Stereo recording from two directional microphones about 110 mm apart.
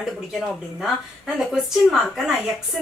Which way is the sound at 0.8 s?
5° right (ahead or behind).